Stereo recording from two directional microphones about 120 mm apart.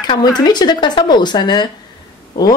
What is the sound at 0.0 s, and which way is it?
A woman's voice, 35° left (ahead or behind).